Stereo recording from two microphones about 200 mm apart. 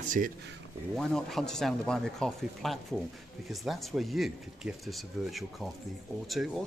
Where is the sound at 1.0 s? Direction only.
Centre (ahead or behind).